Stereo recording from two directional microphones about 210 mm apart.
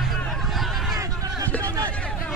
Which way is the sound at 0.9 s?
15° right (ahead or behind).